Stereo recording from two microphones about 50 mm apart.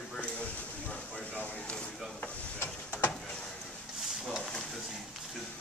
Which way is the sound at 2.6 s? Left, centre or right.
Left.